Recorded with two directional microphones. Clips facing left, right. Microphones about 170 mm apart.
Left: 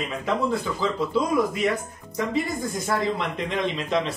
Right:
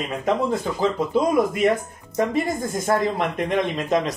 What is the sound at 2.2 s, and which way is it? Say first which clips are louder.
Speech: right 4 dB; 50° right (ahead or behind).